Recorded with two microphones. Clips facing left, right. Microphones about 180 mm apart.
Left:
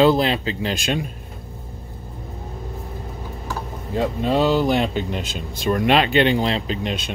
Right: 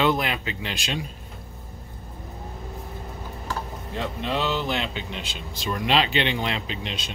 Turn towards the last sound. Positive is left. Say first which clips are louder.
# left 7 dB
turn(degrees=50)  # may be behind; listen again after turning